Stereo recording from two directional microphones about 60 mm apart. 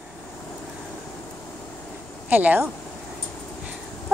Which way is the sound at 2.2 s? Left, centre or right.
Right.